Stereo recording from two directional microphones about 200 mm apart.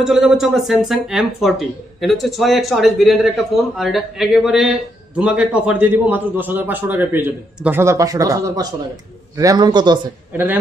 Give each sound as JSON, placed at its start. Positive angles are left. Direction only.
{"t": 0.0, "sound": "a man's voice", "side_deg": 0}
{"t": 10.3, "sound": "a man's voice", "side_deg": -10}